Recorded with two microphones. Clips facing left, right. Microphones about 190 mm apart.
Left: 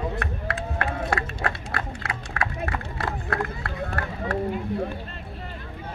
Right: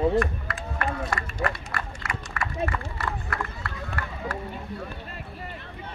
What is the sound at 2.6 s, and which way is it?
Run, 60° left (ahead or behind).